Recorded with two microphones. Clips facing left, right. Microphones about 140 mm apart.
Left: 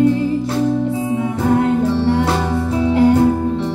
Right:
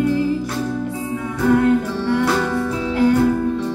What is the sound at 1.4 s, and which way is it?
Music, 25° left (ahead or behind).